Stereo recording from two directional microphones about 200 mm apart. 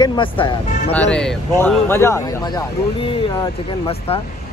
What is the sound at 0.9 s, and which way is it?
Speech, 5° left (ahead or behind).